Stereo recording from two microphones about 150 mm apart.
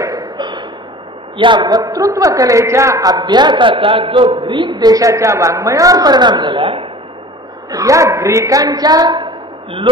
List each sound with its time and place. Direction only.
0.0 s a sound: 25° right (ahead or behind)
1.4 s a man's voice: 30° right (ahead or behind)
7.7 s a woman's voice: 20° right (ahead or behind)